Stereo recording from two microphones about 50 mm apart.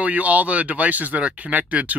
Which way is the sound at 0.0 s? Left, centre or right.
Right.